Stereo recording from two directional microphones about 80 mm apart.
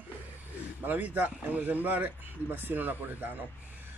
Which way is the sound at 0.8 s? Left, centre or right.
Right.